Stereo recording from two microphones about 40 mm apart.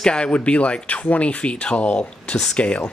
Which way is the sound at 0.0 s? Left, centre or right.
Left.